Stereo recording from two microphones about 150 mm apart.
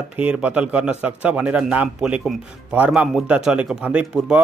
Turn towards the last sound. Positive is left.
turn(degrees=-10)  # may be behind; listen again after turning